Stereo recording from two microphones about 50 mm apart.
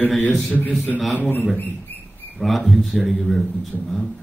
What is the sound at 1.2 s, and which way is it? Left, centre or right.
Speech, left.